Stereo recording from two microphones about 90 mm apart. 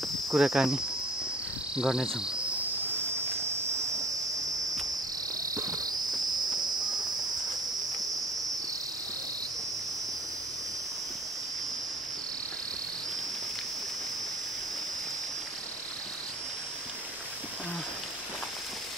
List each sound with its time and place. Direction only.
0.3 s speech: 5° right (ahead or behind)
1.8 s insect: 5° right (ahead or behind)
5.4 s cricket: 40° right (ahead or behind)